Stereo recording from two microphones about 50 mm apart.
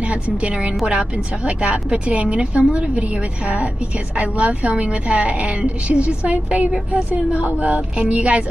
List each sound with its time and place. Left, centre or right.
0.0 s a woman's voice: right